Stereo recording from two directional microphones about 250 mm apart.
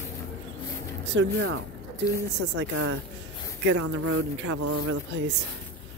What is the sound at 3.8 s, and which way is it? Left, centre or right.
Speech, right.